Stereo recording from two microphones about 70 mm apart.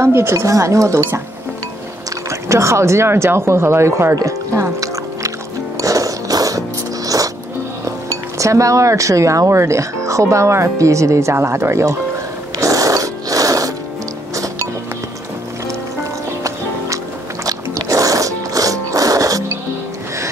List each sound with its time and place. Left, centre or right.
0.0 s speech: right
0.5 s speech: right
2.4 s speech: right
5.8 s music: right
7.8 s speech: right
12.5 s a sound: right
14.3 s music: right
16.0 s music: right